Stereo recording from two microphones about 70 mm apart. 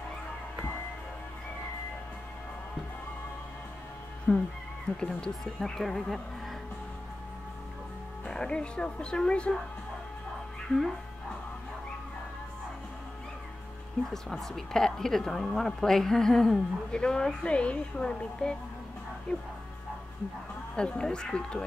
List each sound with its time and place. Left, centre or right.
4.3 s a woman's voice: centre
8.3 s a woman's voice: centre
14.1 s a woman's voice: centre
20.7 s a woman's voice: centre